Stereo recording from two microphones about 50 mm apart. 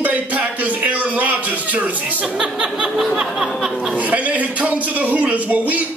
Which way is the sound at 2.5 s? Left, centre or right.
Centre.